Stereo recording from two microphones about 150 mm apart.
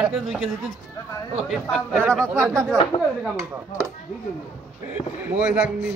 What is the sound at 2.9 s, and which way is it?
Speech, 30° left (ahead or behind).